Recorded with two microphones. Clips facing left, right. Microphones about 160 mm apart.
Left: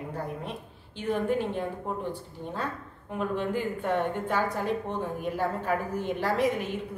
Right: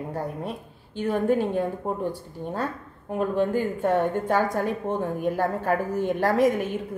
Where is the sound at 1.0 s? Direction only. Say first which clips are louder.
Right 5 dB; 45° right (ahead or behind).